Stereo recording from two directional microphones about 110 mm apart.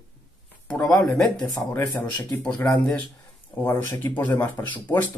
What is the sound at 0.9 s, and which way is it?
Speech, 5° left (ahead or behind).